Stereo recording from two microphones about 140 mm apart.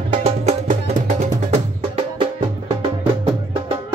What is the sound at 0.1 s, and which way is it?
Music, 50° right (ahead or behind).